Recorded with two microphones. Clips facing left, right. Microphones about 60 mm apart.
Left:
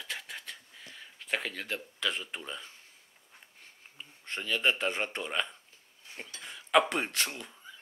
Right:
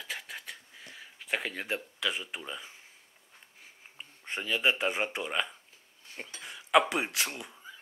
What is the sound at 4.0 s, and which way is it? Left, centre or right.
Speech, centre.